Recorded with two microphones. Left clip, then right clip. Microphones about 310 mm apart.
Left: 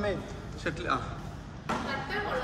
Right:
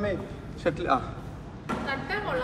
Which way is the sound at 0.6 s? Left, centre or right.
Centre.